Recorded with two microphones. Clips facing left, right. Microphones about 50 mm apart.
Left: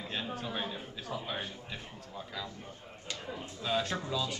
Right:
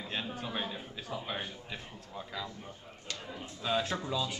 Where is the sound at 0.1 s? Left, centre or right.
Centre.